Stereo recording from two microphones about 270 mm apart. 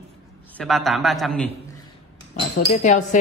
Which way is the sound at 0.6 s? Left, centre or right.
Centre.